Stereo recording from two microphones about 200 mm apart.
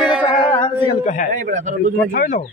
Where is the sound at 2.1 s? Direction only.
45° left (ahead or behind).